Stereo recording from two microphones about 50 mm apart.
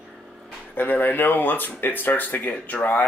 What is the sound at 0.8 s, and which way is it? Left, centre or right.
Speech, left.